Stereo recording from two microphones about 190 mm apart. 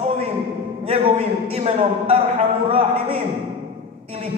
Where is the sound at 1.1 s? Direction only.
30° right (ahead or behind).